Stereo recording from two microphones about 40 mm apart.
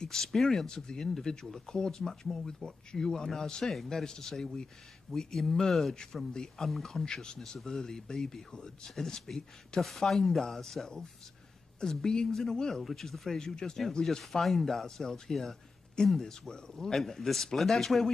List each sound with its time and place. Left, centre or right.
0.1 s a man's voice: centre
7.1 s a man's voice: centre
14.4 s a man's voice: centre